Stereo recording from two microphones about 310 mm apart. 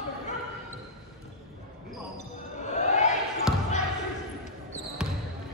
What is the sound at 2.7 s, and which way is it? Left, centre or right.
Basketball bounce, left.